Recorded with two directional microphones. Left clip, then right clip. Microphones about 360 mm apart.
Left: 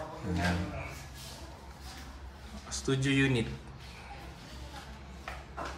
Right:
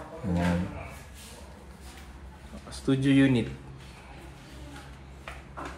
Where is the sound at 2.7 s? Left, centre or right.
Centre.